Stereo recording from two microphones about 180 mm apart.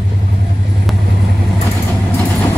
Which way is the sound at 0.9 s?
Centre (ahead or behind).